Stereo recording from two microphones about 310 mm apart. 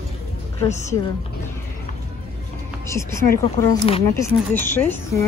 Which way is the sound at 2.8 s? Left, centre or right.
Centre.